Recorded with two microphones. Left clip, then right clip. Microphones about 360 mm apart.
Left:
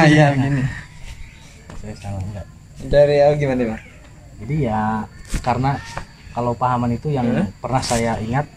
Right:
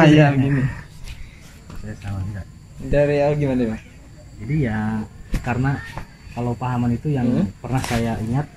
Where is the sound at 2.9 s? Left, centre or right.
Left.